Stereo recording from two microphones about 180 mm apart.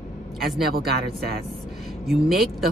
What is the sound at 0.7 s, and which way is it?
Speech, 60° right (ahead or behind).